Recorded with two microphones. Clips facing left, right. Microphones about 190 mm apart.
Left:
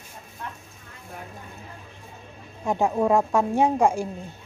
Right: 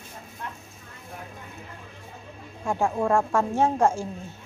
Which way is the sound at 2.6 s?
20° left (ahead or behind).